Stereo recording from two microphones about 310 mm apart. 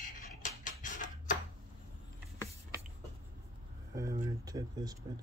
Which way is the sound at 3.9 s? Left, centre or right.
Centre.